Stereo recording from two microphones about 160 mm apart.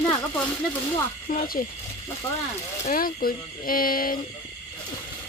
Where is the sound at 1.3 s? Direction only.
65° left (ahead or behind).